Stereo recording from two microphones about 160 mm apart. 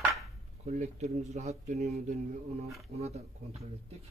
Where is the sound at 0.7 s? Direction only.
45° right (ahead or behind).